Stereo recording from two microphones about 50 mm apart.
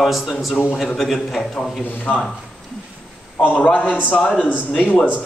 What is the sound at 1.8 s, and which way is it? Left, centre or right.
Speech, left.